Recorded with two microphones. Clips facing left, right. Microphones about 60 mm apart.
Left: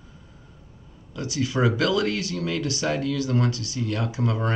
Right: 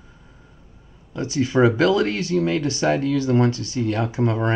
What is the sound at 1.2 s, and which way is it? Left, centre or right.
Speech, right.